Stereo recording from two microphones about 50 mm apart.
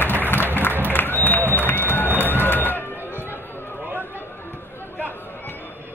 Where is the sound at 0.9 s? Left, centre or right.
Left.